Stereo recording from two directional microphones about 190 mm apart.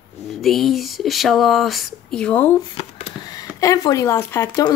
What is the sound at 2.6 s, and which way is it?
Speech, 25° left (ahead or behind).